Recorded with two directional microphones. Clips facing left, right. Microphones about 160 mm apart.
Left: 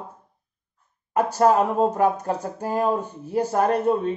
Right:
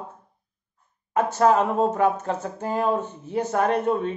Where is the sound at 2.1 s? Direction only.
35° left (ahead or behind).